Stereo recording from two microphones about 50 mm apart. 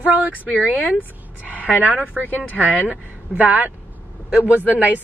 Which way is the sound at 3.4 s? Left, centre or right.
Right.